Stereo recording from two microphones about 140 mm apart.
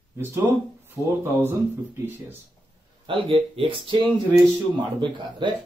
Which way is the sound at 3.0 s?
40° right (ahead or behind).